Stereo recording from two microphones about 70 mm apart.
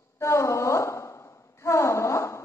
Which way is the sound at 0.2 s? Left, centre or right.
Left.